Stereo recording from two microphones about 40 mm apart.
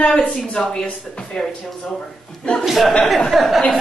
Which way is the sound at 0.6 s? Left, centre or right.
Centre.